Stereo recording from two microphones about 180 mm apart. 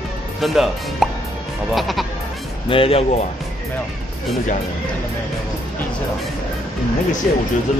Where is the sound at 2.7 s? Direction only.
30° left (ahead or behind).